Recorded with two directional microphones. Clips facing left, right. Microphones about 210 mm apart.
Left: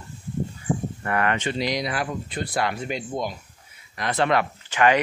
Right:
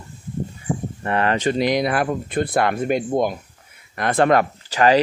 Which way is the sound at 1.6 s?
55° right (ahead or behind).